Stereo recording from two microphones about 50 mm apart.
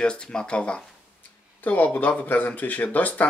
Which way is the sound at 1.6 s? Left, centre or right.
Left.